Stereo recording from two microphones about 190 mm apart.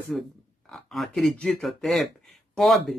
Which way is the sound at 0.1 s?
5° left (ahead or behind).